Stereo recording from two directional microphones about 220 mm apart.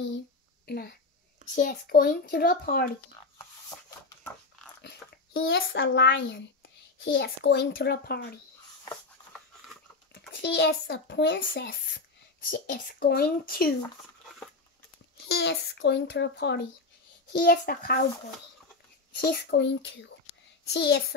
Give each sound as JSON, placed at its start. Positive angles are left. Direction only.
{"t": 0.7, "sound": "a child's voice", "side_deg": 45}
{"t": 4.8, "sound": "chewing", "side_deg": 45}
{"t": 5.6, "sound": "a child's voice", "side_deg": 55}
{"t": 10.1, "sound": "a child's voice", "side_deg": 50}
{"t": 12.7, "sound": "a child's voice", "side_deg": 45}
{"t": 15.2, "sound": "a child's voice", "side_deg": 50}
{"t": 19.1, "sound": "a child's voice", "side_deg": 45}